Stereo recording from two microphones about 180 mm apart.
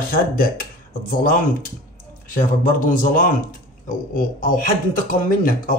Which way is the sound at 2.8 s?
50° left (ahead or behind).